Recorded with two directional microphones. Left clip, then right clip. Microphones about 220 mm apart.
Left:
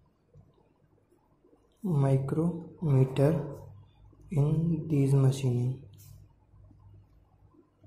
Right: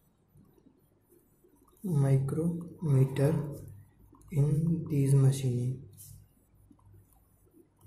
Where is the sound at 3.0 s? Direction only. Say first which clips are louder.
Left 4 dB; 10° left (ahead or behind).